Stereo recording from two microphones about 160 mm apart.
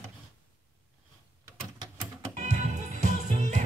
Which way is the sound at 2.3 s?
50° right (ahead or behind).